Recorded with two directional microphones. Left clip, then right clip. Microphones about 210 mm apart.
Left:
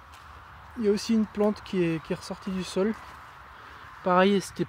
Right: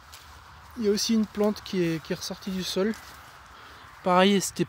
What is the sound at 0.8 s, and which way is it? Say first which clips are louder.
Speech: even; 10° right (ahead or behind).